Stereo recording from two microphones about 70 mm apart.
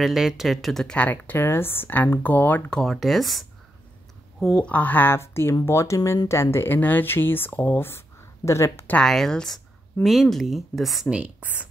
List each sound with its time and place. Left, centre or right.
0.0 s speech: centre
0.8 s speech: centre
2.7 s speech: centre
4.6 s speech: left
8.5 s speech: left
9.0 s speech: centre
11.1 s speech: centre